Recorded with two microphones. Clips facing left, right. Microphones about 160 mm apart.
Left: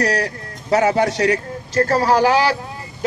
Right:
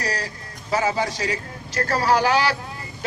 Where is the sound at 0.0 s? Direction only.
70° left (ahead or behind).